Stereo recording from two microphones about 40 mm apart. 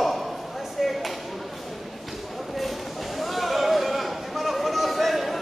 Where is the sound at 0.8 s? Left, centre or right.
Centre.